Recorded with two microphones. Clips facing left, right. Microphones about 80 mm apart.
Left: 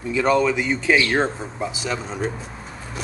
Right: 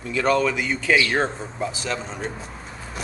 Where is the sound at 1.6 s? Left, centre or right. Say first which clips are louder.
Left 1 dB; centre.